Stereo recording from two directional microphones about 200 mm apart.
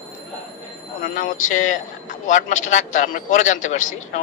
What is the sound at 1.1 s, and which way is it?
Speech, 40° left (ahead or behind).